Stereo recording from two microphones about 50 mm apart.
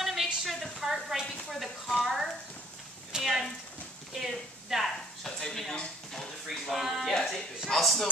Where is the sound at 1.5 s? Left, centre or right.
Centre.